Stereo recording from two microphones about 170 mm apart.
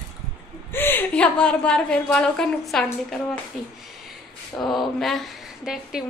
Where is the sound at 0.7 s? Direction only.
10° left (ahead or behind).